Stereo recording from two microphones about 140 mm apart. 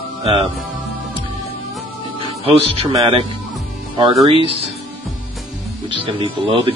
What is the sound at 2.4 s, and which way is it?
Speech, 40° right (ahead or behind).